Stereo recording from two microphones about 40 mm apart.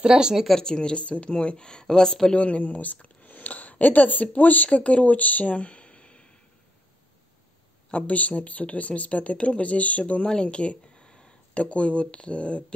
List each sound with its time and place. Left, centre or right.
0.0 s speech: centre
0.6 s speech: centre
2.3 s speech: left
7.9 s speech: left
10.2 s speech: left